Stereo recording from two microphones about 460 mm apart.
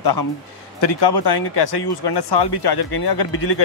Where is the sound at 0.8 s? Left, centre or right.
Left.